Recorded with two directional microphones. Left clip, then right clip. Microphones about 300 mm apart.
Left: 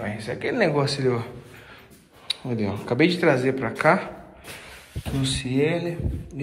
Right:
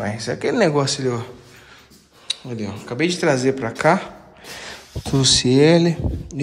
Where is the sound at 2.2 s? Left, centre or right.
Centre.